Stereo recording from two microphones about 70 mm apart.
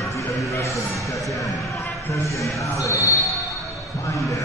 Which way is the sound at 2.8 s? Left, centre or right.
Left.